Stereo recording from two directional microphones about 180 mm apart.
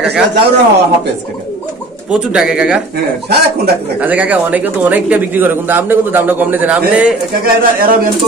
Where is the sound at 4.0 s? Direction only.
10° right (ahead or behind).